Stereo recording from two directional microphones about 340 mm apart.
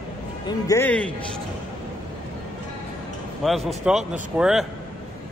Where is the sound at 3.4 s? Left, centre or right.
Centre.